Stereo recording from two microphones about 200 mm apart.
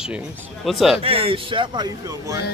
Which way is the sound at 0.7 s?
Centre (ahead or behind).